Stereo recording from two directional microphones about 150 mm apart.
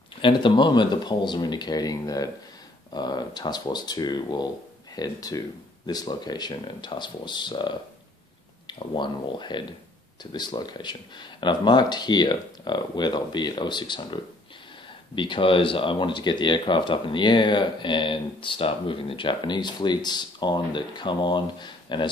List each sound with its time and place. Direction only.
0.2 s speech: 35° left (ahead or behind)